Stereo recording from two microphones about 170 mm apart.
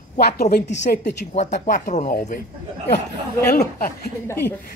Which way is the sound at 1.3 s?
40° left (ahead or behind).